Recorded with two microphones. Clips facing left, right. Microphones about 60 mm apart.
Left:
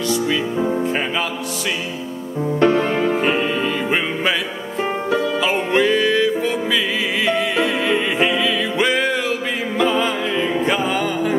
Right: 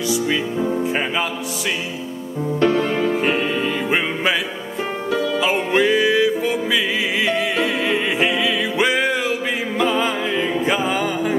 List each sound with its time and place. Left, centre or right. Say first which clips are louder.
2.6 s music: left 2 dB; left
3.9 s music: right 2 dB; centre
5.4 s music: right 2 dB; centre